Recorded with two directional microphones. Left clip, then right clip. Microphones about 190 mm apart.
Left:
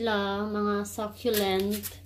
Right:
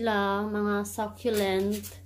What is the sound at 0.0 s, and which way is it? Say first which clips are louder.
Speech: right 1 dB; centre (ahead or behind).